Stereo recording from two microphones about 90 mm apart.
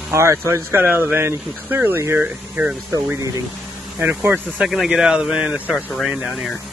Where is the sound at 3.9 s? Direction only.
20° right (ahead or behind).